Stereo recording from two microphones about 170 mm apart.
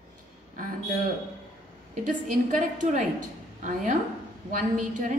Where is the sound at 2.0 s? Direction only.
50° right (ahead or behind).